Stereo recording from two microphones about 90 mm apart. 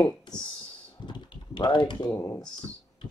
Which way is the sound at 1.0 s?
60° left (ahead or behind).